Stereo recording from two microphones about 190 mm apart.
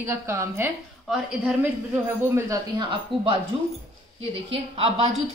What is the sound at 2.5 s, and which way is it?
Speech, 25° right (ahead or behind).